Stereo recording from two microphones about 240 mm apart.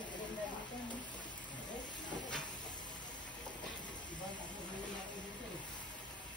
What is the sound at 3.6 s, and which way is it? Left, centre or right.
Vehicle, centre.